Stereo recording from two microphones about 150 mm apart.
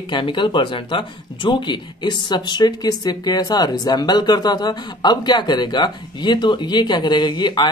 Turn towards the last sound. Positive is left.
turn(degrees=30)  # may be behind; listen again after turning